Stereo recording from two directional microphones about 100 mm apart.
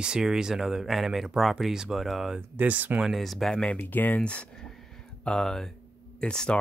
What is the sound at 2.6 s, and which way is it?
Speech, 15° right (ahead or behind).